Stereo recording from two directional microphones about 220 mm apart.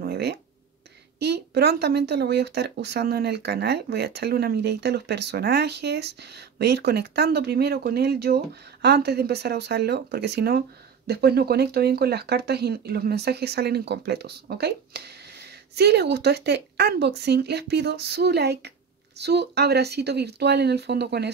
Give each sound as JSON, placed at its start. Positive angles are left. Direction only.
{"t": 0.0, "sound": "speech", "side_deg": -50}